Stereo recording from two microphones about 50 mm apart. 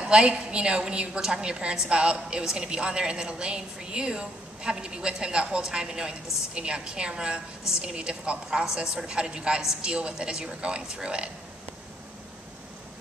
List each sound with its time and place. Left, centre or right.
0.0 s a woman's voice: centre